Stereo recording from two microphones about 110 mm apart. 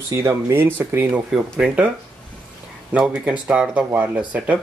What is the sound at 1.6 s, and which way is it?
Speech, 5° right (ahead or behind).